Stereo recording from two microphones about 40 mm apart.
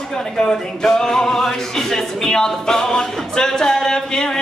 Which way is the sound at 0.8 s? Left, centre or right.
Centre.